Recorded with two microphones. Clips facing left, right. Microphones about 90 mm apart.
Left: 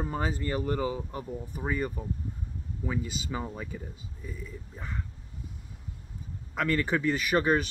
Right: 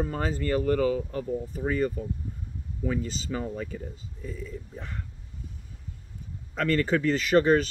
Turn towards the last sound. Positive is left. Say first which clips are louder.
# right 4 dB
turn(degrees=10)  # may be behind; listen again after turning